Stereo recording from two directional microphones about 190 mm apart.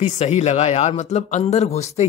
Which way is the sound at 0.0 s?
35° left (ahead or behind).